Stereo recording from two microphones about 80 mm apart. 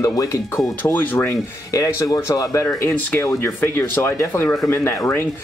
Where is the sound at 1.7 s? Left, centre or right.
Left.